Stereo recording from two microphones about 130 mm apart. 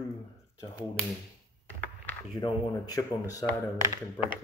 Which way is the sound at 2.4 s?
30° left (ahead or behind).